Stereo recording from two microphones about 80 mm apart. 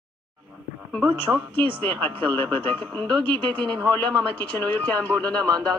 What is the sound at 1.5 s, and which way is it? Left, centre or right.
Speech, left.